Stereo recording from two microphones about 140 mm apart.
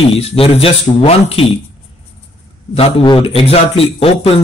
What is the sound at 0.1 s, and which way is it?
A man's voice, 45° left (ahead or behind).